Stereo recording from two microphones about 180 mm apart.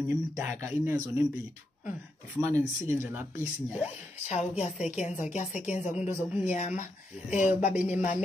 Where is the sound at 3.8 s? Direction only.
35° left (ahead or behind).